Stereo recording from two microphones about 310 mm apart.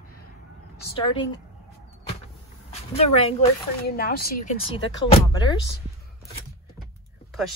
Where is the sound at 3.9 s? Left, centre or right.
Left.